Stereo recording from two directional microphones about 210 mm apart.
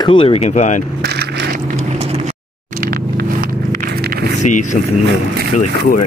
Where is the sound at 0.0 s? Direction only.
25° left (ahead or behind).